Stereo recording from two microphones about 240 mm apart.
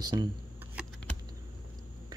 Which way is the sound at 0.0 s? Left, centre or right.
Centre.